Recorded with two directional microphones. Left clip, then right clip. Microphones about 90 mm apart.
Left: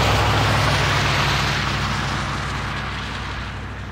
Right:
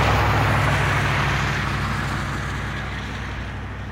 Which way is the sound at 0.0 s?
40° left (ahead or behind).